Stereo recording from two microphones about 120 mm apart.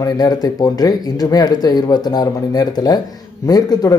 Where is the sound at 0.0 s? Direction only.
35° left (ahead or behind).